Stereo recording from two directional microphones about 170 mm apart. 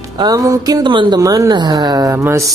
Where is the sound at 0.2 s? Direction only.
20° right (ahead or behind).